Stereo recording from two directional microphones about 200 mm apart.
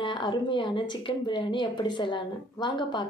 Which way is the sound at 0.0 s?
25° left (ahead or behind).